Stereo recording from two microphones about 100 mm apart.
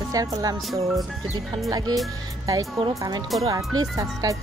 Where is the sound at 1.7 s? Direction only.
40° right (ahead or behind).